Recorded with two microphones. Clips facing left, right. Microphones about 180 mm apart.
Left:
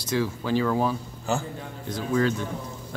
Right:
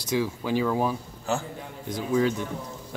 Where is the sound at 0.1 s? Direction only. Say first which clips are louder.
Left 1 dB; 15° right (ahead or behind).